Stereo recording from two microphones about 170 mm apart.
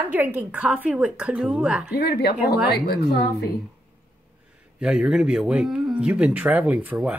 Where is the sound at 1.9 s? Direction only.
70° left (ahead or behind).